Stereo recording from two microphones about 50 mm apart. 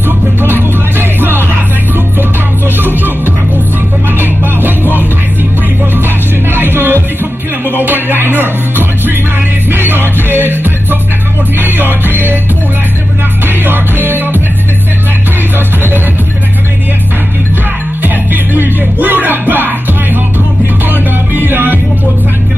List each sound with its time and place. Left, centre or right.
0.4 s music: right
2.8 s music: right
6.5 s music: right
8.4 s music: right
13.7 s music: right
18.0 s music: right
21.5 s music: right